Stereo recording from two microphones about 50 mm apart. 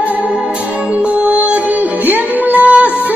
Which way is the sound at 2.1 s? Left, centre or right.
Right.